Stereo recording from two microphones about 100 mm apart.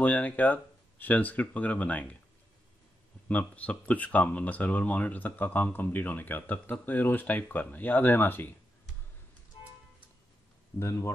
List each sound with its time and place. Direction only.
0.0 s speech: 15° left (ahead or behind)
3.3 s speech: 15° left (ahead or behind)
10.8 s speech: 30° left (ahead or behind)